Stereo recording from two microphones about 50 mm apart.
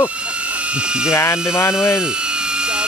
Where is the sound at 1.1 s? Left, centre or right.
Left.